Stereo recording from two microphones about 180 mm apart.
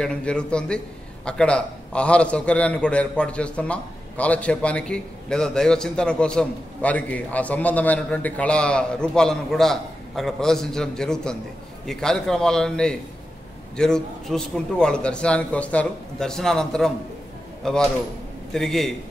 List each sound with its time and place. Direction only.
0.0 s a man's voice: 5° left (ahead or behind)